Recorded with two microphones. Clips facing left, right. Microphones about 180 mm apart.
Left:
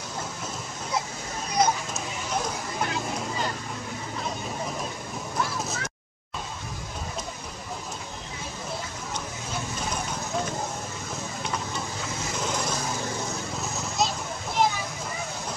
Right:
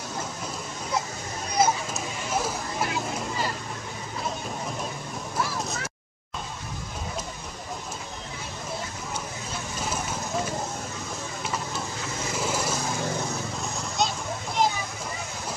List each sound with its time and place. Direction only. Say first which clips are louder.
1.6 s a sound: right 1 dB; 5° right (ahead or behind)
5.4 s vehicle: even; centre (ahead or behind)
9.8 s clip-clop: right 4 dB; 5° right (ahead or behind)
11.4 s a sound: right 1 dB; 5° right (ahead or behind)
12.4 s lawn mower: right 2 dB; 5° right (ahead or behind)
13.6 s vehicle: left 1 dB; centre (ahead or behind)